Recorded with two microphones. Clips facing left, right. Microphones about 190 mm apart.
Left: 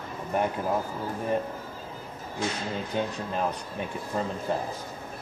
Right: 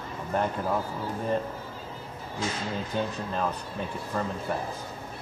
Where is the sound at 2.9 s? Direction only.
15° left (ahead or behind).